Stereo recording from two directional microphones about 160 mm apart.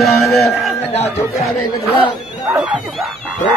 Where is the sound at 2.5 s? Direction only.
5° right (ahead or behind).